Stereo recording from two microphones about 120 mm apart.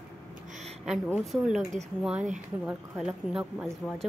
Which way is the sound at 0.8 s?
Centre (ahead or behind).